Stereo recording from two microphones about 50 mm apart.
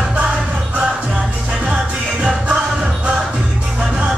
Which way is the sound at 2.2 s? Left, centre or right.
Right.